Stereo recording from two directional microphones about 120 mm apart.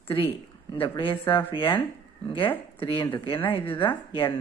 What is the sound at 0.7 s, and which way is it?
Speech, 45° left (ahead or behind).